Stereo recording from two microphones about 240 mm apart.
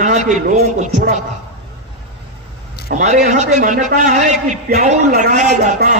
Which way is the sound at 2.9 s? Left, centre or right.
Right.